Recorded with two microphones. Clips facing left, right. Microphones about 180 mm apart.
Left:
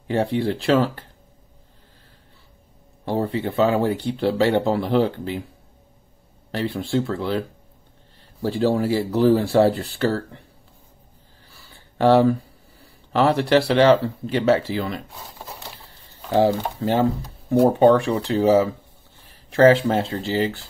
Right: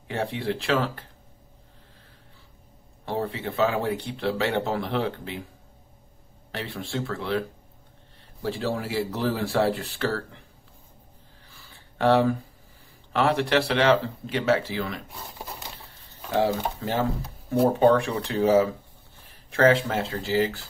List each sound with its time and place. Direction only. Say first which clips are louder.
0.1 s speech: left 7 dB; 35° left (ahead or behind)
3.1 s speech: left 6 dB; 35° left (ahead or behind)
6.5 s speech: left 9 dB; 35° left (ahead or behind)
11.5 s a sound: left 6 dB; 35° left (ahead or behind)
13.1 s speech: left 5 dB; 35° left (ahead or behind)
16.3 s speech: left 5 dB; 25° left (ahead or behind)